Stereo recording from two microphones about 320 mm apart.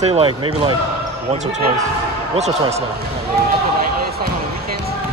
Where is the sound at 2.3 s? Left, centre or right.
Centre.